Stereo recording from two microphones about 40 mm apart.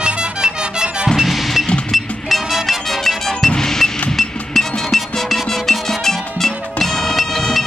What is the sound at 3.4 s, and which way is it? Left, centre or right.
Music, centre.